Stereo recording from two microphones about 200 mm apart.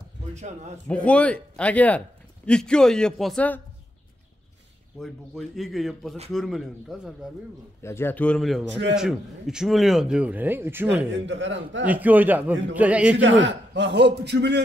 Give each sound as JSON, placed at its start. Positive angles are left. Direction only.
{"t": 0.3, "sound": "a man's voice", "side_deg": -35}
{"t": 0.8, "sound": "speech", "side_deg": 5}
{"t": 5.0, "sound": "speech", "side_deg": 0}
{"t": 7.8, "sound": "speech", "side_deg": 10}
{"t": 11.1, "sound": "a man's voice", "side_deg": -65}
{"t": 11.8, "sound": "a man's voice", "side_deg": -10}
{"t": 13.2, "sound": "a man's voice", "side_deg": -65}